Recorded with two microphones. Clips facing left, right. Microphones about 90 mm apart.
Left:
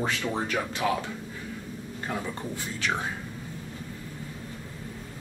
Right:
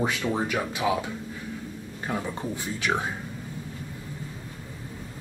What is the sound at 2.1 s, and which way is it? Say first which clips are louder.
Speech: right 3 dB; 15° right (ahead or behind).